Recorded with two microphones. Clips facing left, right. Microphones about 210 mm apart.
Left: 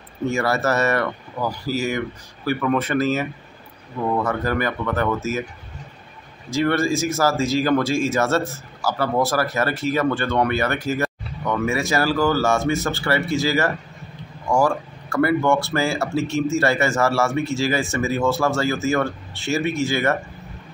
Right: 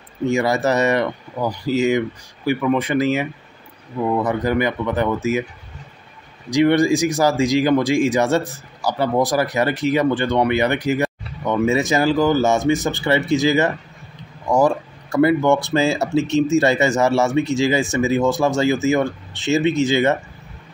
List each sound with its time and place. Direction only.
0.3 s speech: 15° right (ahead or behind)
6.5 s speech: 15° right (ahead or behind)